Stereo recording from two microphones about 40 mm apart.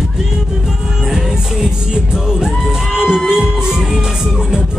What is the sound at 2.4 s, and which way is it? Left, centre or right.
Music, centre.